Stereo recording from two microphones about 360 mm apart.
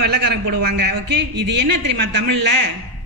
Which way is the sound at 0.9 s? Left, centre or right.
Right.